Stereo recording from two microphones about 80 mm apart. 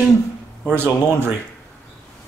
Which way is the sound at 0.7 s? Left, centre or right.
Right.